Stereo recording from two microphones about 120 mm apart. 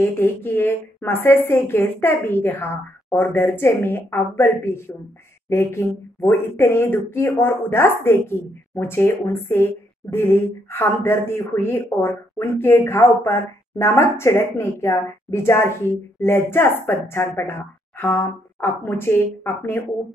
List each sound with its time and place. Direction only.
0.0 s a woman's voice: 15° left (ahead or behind)